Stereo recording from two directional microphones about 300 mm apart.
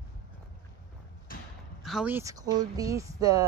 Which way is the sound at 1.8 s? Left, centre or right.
Centre.